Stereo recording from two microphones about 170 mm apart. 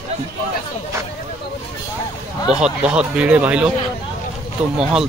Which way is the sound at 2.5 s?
5° right (ahead or behind).